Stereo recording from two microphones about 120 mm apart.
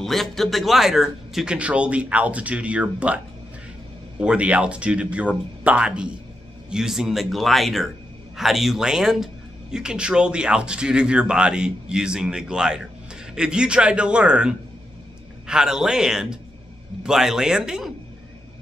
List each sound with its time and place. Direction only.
0.0 s speech: centre (ahead or behind)
4.2 s speech: 10° right (ahead or behind)